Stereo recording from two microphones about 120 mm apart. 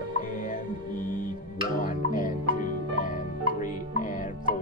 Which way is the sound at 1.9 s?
90° left.